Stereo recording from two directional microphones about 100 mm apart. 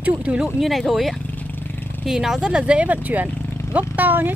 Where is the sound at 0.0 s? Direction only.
15° right (ahead or behind).